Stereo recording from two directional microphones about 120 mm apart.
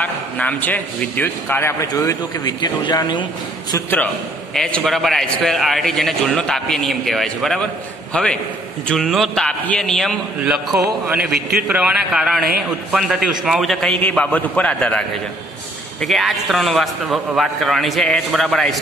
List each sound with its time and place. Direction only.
0.0 s a man's voice: 10° left (ahead or behind); by 3.3 s 35° left (ahead or behind)
4.6 s a man's voice: 5° left (ahead or behind)
10.4 s a man's voice: 10° right (ahead or behind)